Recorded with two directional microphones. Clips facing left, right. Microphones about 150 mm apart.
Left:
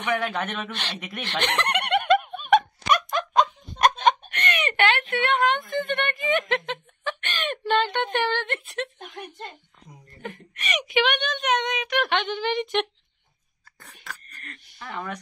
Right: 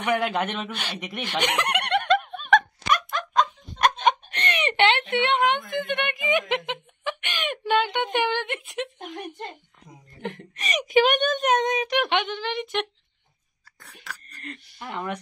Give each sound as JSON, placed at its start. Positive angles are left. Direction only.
{"t": 0.0, "sound": "speech", "side_deg": -15}
{"t": 1.8, "sound": "a sound", "side_deg": 5}
{"t": 4.3, "sound": "a sound", "side_deg": -30}
{"t": 10.5, "sound": "speech", "side_deg": -35}
{"t": 11.9, "sound": "speech", "side_deg": -15}
{"t": 12.3, "sound": "a woman's voice", "side_deg": 0}
{"t": 14.4, "sound": "speech", "side_deg": -25}